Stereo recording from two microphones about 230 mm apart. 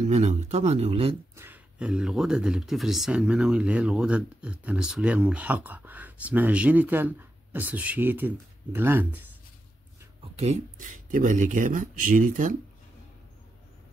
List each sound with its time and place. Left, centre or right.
0.0 s speech: right
1.3 s speech: centre
10.3 s speech: right